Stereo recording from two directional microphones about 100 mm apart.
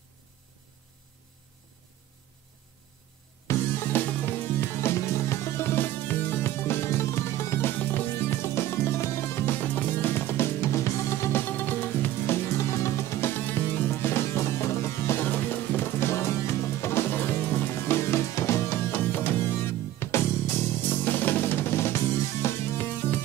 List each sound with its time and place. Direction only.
3.4 s music: 20° left (ahead or behind)
20.9 s drum kit: 20° left (ahead or behind)